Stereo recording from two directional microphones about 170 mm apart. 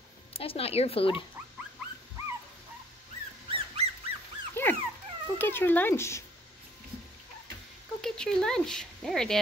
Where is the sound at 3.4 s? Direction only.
35° right (ahead or behind).